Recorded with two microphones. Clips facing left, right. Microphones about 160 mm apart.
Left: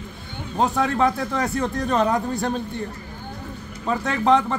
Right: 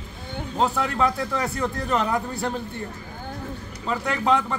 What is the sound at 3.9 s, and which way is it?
Speech, 20° left (ahead or behind).